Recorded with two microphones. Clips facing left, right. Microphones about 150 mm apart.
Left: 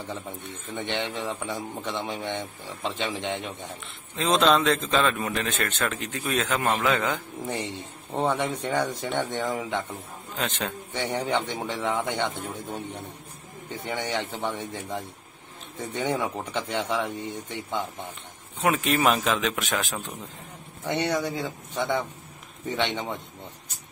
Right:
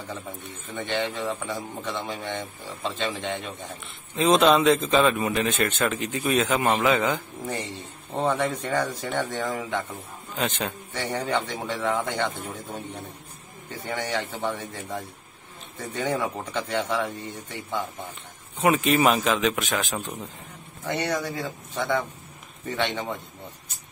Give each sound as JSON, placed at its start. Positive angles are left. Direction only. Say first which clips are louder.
{"t": 0.7, "sound": "speech", "louder": "right 2 dB", "side_deg": 20}
{"t": 4.2, "sound": "speech", "louder": "right 3 dB", "side_deg": -5}
{"t": 8.1, "sound": "speech", "louder": "right 1 dB", "side_deg": 15}
{"t": 10.3, "sound": "a man's voice", "louder": "right 2 dB", "side_deg": -5}
{"t": 10.9, "sound": "speech", "louder": "left 1 dB", "side_deg": 20}
{"t": 13.8, "sound": "speech", "louder": "right 1 dB", "side_deg": 20}
{"t": 18.6, "sound": "a man's voice", "louder": "right 3 dB", "side_deg": -5}
{"t": 20.8, "sound": "speech", "louder": "left 1 dB", "side_deg": 20}